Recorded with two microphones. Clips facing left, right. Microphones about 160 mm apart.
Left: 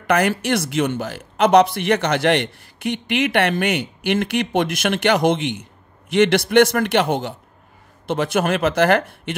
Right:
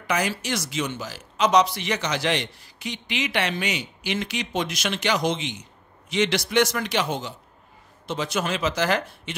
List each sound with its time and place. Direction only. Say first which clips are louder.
0.0 s speech: left 7 dB; 60° left (ahead or behind)